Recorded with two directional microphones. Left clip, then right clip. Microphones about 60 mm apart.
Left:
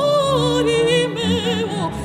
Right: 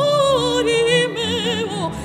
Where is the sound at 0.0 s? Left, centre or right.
Right.